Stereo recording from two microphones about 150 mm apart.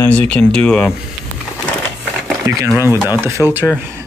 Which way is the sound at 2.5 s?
20° right (ahead or behind).